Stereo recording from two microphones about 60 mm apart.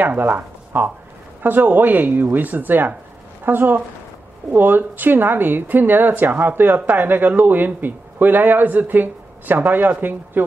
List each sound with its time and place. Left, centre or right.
0.0 s speech: right